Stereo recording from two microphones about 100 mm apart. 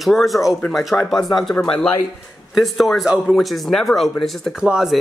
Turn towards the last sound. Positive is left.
turn(degrees=-10)  # may be behind; listen again after turning